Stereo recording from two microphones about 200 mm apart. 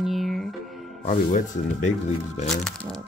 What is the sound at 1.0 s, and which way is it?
Speech, 40° left (ahead or behind).